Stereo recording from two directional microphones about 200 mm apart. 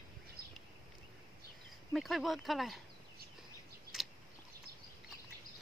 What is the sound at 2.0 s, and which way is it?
Speech, centre (ahead or behind).